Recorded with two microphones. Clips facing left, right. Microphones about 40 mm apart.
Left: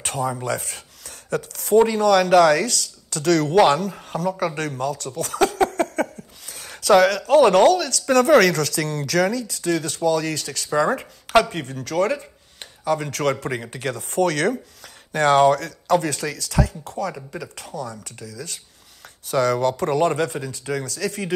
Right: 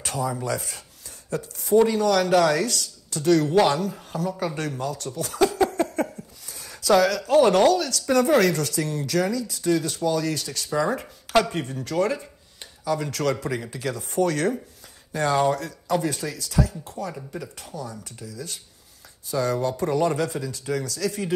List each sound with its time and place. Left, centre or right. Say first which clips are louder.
0.0 s speech: left 2 dB; left
1.9 s speech: left 4 dB; left
3.5 s speech: left 4 dB; left